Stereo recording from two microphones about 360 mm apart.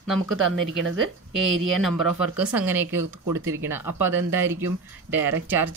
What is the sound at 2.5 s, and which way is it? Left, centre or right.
Speech, centre.